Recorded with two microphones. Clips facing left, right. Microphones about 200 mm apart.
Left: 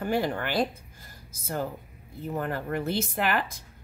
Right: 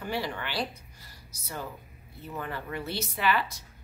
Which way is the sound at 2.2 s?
50° left (ahead or behind).